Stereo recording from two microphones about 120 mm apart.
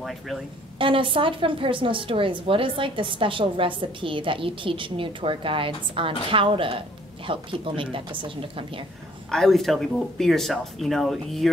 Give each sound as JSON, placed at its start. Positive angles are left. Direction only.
{"t": 0.7, "sound": "a woman's voice", "side_deg": -45}
{"t": 9.3, "sound": "speech", "side_deg": 5}